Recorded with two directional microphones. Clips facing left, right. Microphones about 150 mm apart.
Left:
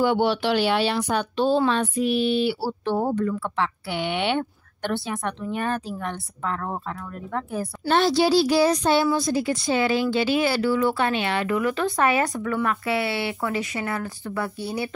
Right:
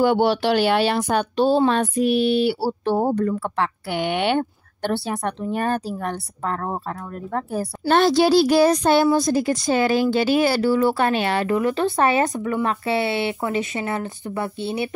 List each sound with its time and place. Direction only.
0.0 s a woman's voice: 45° right (ahead or behind)
7.9 s a woman's voice: 55° right (ahead or behind); by 14.9 s 25° right (ahead or behind)